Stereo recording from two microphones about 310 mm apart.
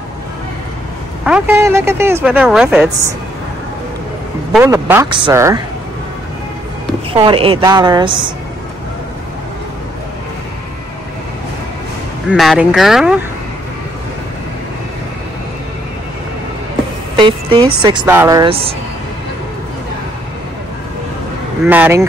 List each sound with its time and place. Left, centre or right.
1.2 s speech: centre
4.5 s speech: centre
7.1 s speech: centre
12.3 s speech: centre
17.1 s music: centre
17.8 s speech: centre
21.6 s speech: centre